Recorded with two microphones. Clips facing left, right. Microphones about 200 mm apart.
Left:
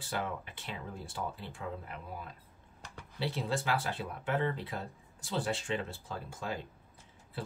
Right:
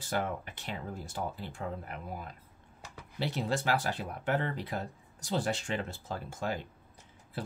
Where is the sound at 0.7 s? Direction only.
45° right (ahead or behind).